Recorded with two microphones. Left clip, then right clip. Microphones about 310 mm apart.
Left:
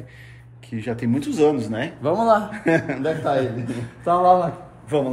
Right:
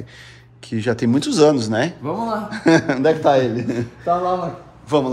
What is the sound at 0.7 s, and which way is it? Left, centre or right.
Speech, right.